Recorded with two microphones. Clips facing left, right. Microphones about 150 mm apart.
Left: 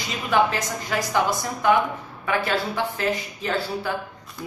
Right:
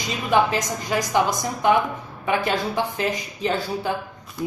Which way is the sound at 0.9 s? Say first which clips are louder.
Right 2 dB; 15° right (ahead or behind).